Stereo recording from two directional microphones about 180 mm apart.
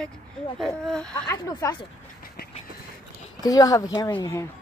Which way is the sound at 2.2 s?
60° left (ahead or behind).